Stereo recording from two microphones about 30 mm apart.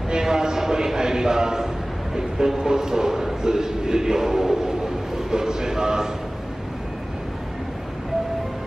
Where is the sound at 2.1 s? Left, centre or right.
Centre.